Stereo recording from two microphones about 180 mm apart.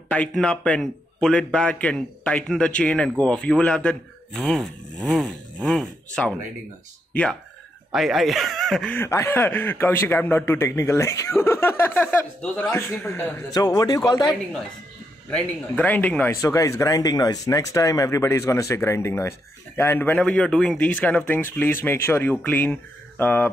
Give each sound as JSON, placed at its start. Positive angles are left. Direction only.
{"t": 0.1, "sound": "a man's voice", "side_deg": 5}
{"t": 7.9, "sound": "speech", "side_deg": 0}
{"t": 15.2, "sound": "speech", "side_deg": 5}